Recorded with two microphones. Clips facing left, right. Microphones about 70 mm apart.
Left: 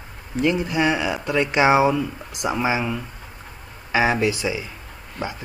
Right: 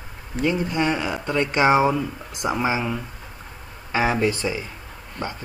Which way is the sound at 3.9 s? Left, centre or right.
Left.